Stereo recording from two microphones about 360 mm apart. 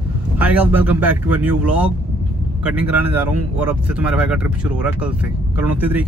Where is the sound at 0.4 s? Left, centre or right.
Centre.